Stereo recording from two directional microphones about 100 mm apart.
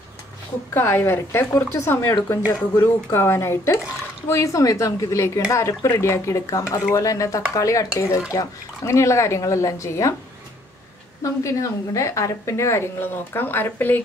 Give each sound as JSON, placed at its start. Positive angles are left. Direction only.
{"t": 0.7, "sound": "a woman's voice", "side_deg": 25}
{"t": 11.4, "sound": "a woman's voice", "side_deg": 30}